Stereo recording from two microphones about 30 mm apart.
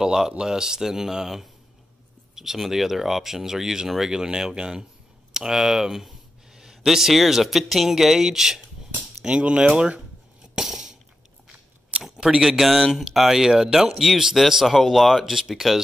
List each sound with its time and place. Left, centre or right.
0.4 s speech: centre
9.3 s speech: right
10.6 s a sound: centre
12.2 s speech: right
12.4 s speech: centre